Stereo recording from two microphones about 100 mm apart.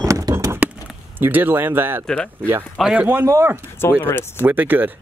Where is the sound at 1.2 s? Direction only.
20° right (ahead or behind).